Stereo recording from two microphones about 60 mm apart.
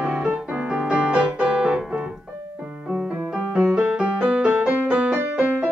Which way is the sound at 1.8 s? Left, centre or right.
Centre.